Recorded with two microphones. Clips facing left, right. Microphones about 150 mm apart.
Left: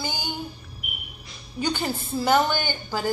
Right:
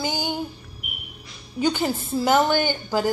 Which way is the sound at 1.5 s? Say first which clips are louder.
Right 4 dB; 15° right (ahead or behind).